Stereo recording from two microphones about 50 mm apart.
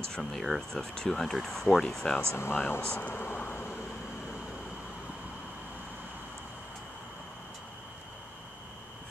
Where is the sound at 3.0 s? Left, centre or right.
Left.